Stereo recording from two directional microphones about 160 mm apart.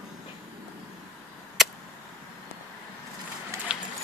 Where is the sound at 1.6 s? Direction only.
Centre (ahead or behind).